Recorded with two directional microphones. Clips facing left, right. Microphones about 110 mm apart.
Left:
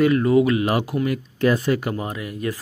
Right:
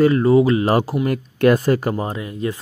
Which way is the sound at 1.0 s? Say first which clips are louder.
Right 5 dB; 50° right (ahead or behind).